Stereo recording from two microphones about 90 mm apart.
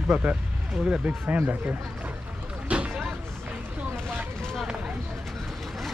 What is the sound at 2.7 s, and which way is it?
Vehicle, 10° right (ahead or behind).